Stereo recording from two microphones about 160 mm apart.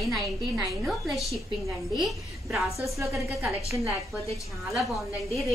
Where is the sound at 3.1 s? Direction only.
20° right (ahead or behind).